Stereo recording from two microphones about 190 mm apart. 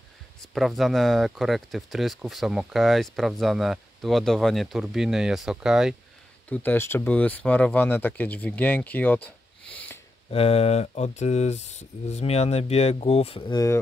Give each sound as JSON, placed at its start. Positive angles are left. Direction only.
{"t": 0.4, "sound": "speech", "side_deg": 0}
{"t": 6.5, "sound": "speech", "side_deg": 10}
{"t": 10.3, "sound": "speech", "side_deg": 30}